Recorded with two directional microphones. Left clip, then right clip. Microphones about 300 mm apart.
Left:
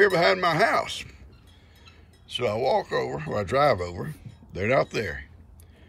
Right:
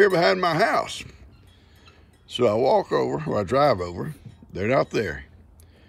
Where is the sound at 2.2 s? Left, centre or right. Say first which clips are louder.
Right 5 dB; centre.